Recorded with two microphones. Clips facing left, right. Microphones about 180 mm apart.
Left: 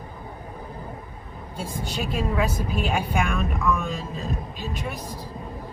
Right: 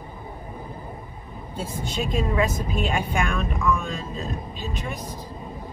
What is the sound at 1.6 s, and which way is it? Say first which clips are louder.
Speech: right 1 dB; 10° left (ahead or behind).